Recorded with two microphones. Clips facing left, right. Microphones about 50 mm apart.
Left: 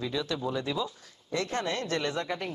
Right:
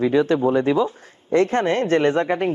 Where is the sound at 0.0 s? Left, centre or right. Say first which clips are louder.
Right 14 dB; right.